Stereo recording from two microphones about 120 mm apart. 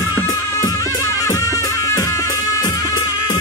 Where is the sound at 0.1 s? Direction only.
25° left (ahead or behind).